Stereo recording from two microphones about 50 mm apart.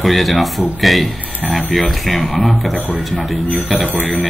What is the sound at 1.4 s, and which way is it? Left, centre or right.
Speech, left.